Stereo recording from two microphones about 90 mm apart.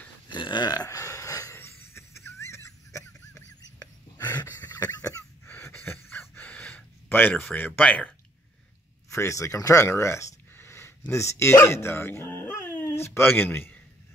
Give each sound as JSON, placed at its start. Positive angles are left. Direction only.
{"t": 0.3, "sound": "a sound", "side_deg": 60}
{"t": 0.8, "sound": "wheeze", "side_deg": 35}
{"t": 4.7, "sound": "chicken", "side_deg": 35}
{"t": 7.5, "sound": "speech", "side_deg": 20}
{"t": 9.1, "sound": "speech", "side_deg": 35}